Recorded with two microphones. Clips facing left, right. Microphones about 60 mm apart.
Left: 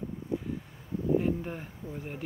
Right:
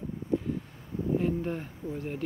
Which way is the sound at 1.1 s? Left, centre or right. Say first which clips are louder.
Even; centre.